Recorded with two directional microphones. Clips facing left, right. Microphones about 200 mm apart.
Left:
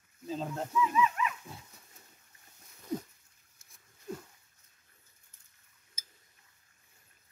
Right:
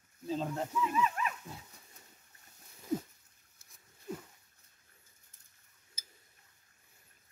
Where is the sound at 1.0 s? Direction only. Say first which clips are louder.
Left 2 dB; 45° right (ahead or behind).